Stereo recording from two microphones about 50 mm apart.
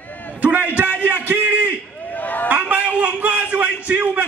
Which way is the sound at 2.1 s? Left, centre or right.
Left.